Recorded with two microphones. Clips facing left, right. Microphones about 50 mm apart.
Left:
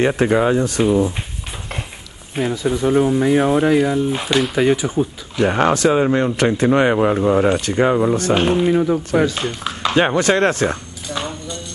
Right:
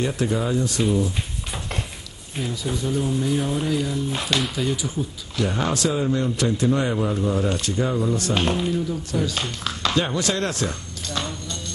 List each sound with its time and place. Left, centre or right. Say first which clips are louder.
0.1 s speech: left 8 dB; left
2.3 s speech: left 8 dB; left
4.1 s speech: left 6 dB; centre
4.6 s speech: left 9 dB; left
8.1 s speech: left 7 dB; left
8.4 s speech: left 6 dB; left
8.6 s speech: left 9 dB; left
9.3 s speech: left 4 dB; left
9.9 s speech: left 10 dB; left
11.1 s clip-clop: left 4 dB; centre